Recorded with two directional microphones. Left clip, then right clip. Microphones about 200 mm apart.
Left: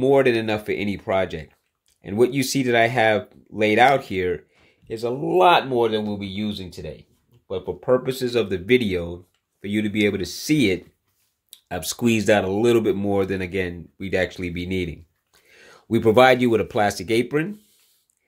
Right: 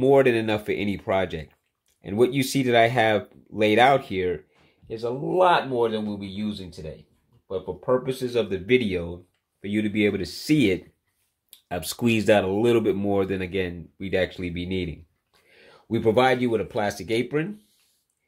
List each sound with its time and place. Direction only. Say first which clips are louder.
0.0 s speech: left 1 dB; 5° left (ahead or behind)
4.9 s speech: left 3 dB; 30° left (ahead or behind)